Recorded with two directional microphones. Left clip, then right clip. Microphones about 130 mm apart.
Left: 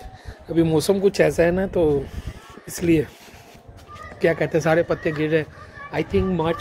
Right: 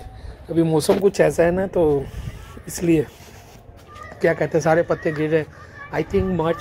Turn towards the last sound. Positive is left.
turn(degrees=5)  # may be behind; listen again after turning